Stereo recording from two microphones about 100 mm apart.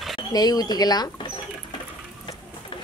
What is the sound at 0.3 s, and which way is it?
Speech, 40° left (ahead or behind).